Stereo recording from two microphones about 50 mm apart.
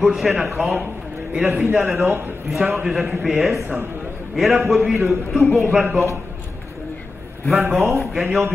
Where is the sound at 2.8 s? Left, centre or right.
Centre.